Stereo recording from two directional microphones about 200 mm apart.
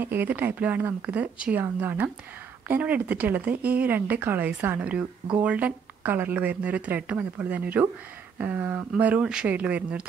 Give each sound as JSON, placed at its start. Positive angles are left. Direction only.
{"t": 0.0, "sound": "speech", "side_deg": -10}